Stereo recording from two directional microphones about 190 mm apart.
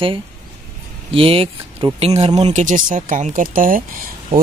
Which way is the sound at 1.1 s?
30° right (ahead or behind).